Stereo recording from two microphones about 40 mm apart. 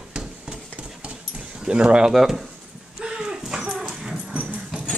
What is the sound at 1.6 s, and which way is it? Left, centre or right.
Speech, right.